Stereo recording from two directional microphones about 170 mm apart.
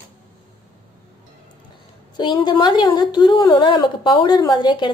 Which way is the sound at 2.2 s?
25° left (ahead or behind).